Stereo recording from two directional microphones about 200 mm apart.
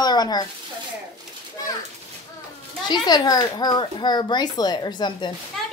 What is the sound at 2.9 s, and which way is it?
A woman's voice, 20° left (ahead or behind).